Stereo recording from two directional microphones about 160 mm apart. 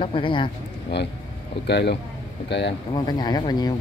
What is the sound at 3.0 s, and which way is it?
Speech, 25° left (ahead or behind).